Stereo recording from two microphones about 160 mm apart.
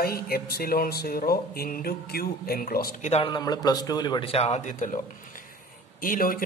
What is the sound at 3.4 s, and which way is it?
Speech, 25° left (ahead or behind).